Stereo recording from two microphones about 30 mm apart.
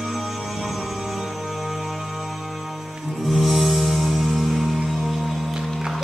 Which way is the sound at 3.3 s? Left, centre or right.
Centre.